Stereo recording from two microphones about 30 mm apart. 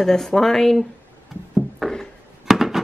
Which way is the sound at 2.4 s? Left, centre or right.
Centre.